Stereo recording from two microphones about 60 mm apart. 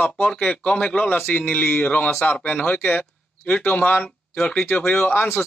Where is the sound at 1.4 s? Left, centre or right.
Centre.